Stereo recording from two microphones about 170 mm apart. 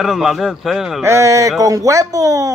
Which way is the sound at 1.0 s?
15° right (ahead or behind).